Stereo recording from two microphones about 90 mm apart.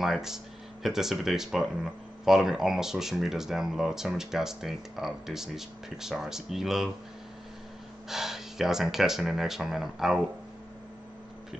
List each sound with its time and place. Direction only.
0.0 s speech: 5° right (ahead or behind)
8.1 s speech: 5° right (ahead or behind)